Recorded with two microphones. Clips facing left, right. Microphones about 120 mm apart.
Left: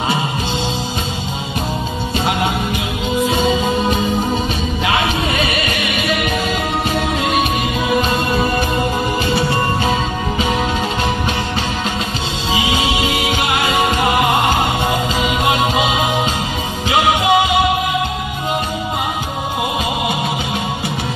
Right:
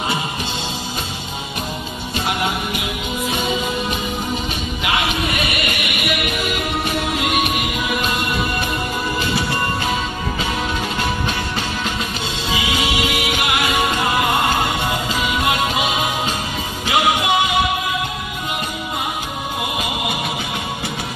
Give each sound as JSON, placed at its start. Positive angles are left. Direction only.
{"t": 2.1, "sound": "music", "side_deg": 25}
{"t": 4.8, "sound": "music", "side_deg": 30}
{"t": 12.5, "sound": "music", "side_deg": 25}